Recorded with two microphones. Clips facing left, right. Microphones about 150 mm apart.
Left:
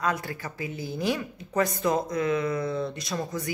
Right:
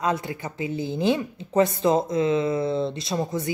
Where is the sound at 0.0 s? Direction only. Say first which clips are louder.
Right 3 dB; 20° right (ahead or behind).